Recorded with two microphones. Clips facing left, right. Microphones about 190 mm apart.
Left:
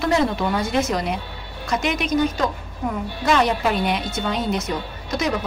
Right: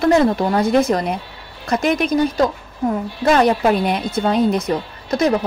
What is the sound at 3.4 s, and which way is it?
A woman's voice, 45° right (ahead or behind).